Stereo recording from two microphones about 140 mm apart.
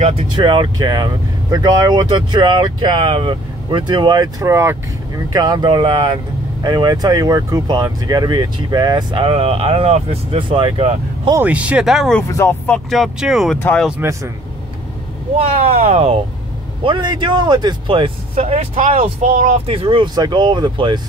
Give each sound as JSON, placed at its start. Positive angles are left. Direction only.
{"t": 0.0, "sound": "speech", "side_deg": -40}
{"t": 11.4, "sound": "speech", "side_deg": -10}
{"t": 12.3, "sound": "speech", "side_deg": 20}
{"t": 12.6, "sound": "speech", "side_deg": 5}
{"t": 13.6, "sound": "speech", "side_deg": 15}
{"t": 15.3, "sound": "speech", "side_deg": -50}
{"t": 16.8, "sound": "speech", "side_deg": -35}
{"t": 19.2, "sound": "speech", "side_deg": -75}
{"t": 19.6, "sound": "speech", "side_deg": -40}